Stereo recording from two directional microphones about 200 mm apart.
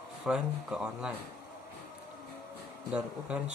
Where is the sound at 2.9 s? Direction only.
10° right (ahead or behind).